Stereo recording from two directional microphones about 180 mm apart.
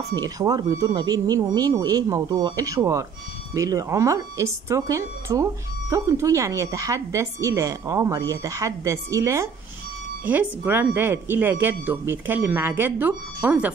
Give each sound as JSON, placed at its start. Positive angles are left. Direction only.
{"t": 0.1, "sound": "speech", "side_deg": -20}